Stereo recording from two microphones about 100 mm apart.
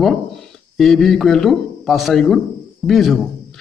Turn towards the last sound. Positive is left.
turn(degrees=0)  # may be behind; listen again after turning